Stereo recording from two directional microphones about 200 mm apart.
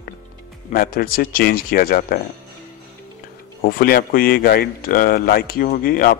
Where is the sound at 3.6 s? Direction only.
45° left (ahead or behind).